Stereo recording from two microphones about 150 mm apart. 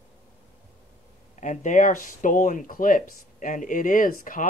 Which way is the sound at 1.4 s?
55° left (ahead or behind).